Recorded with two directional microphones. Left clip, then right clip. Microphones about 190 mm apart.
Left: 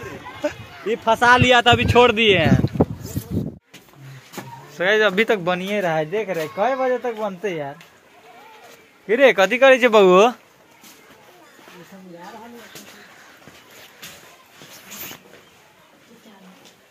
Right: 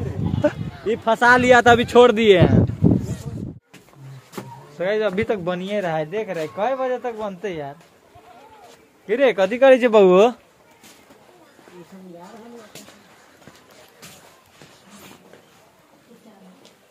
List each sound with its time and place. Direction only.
0.4 s speech: 45° right (ahead or behind)
4.7 s speech: centre (ahead or behind)
5.3 s speech: 20° left (ahead or behind); by 7.7 s 45° left (ahead or behind)
9.0 s speech: 35° left (ahead or behind)
9.6 s speech: 25° right (ahead or behind)